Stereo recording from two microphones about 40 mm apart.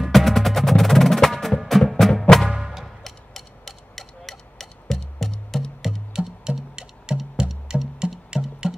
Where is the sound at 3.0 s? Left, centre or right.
Centre.